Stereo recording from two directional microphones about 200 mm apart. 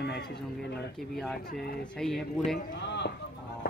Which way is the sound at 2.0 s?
Centre (ahead or behind).